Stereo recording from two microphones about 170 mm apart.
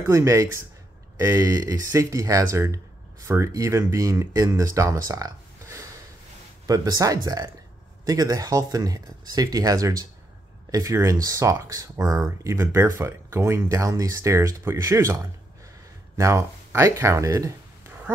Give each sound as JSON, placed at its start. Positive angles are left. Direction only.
{"t": 0.0, "sound": "speech", "side_deg": -15}